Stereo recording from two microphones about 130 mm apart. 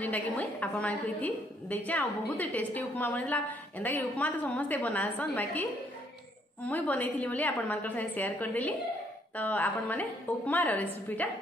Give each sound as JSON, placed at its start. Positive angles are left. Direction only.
{"t": 0.0, "sound": "a woman's voice", "side_deg": 10}